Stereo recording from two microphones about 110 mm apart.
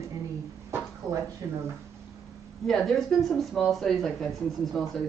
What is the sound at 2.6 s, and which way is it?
Speech, 5° left (ahead or behind).